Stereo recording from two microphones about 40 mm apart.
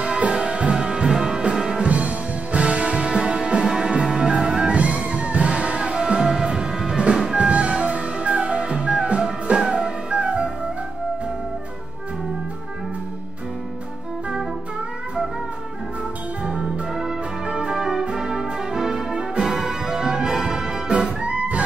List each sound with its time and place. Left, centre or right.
0.3 s music: right
1.9 s music: right
3.6 s music: centre
16.4 s brass instrument: right
17.5 s music: right
17.7 s music: centre
18.1 s brass instrument: centre
19.4 s music: centre
20.9 s music: right